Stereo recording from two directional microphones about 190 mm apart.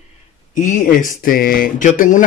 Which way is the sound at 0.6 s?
45° left (ahead or behind).